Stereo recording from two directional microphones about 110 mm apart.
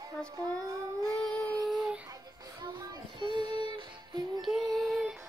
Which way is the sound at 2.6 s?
45° right (ahead or behind).